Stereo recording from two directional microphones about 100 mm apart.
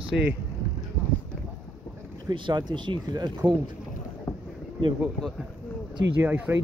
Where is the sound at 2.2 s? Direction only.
50° right (ahead or behind).